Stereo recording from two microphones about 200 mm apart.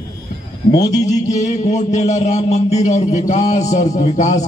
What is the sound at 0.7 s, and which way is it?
Speech, 20° left (ahead or behind).